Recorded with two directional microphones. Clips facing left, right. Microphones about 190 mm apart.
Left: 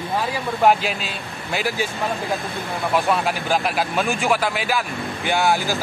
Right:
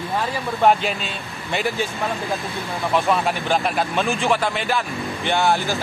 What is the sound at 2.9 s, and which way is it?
Speech, 5° left (ahead or behind).